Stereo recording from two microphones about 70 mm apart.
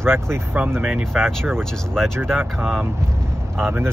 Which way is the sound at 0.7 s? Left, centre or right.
Right.